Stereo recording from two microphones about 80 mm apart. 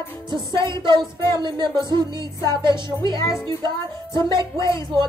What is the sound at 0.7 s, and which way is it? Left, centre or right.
Music, right.